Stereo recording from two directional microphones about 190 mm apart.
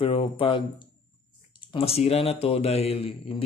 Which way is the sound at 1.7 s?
30° left (ahead or behind).